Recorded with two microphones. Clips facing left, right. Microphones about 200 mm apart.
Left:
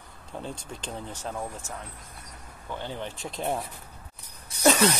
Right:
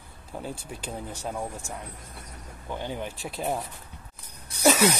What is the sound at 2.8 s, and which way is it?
Speech, 10° right (ahead or behind).